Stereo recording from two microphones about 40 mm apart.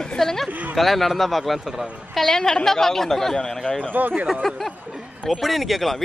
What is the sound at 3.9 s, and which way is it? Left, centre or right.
Speech, right.